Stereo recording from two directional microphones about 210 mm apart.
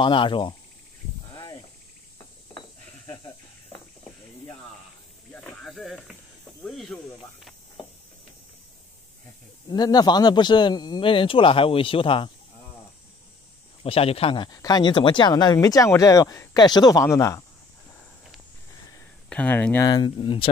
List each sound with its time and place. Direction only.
0.0 s speech: 25° left (ahead or behind)
1.3 s snake: 20° left (ahead or behind)
5.3 s snake: 5° left (ahead or behind)
6.6 s speech: centre (ahead or behind)
9.7 s speech: 20° left (ahead or behind)
13.8 s speech: 25° left (ahead or behind)
19.2 s speech: 5° left (ahead or behind)
19.9 s speech: 20° left (ahead or behind)